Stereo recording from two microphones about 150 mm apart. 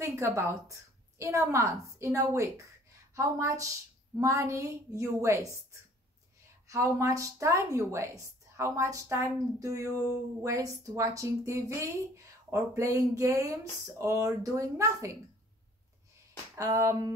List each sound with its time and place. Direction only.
0.0 s a woman's voice: 20° right (ahead or behind)
16.5 s a woman's voice: 20° right (ahead or behind)